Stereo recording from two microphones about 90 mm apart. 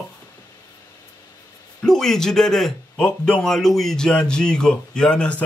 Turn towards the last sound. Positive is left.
turn(degrees=15)  # may be behind; listen again after turning